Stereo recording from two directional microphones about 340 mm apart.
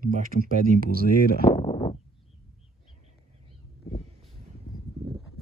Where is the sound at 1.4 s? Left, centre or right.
Centre.